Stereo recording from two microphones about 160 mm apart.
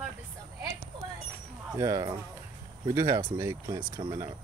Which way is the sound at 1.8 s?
20° right (ahead or behind).